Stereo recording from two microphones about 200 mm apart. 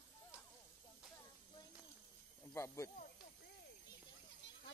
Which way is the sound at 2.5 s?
15° left (ahead or behind).